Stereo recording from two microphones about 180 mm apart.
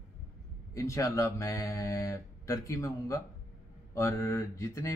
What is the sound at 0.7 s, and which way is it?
Speech, 15° left (ahead or behind).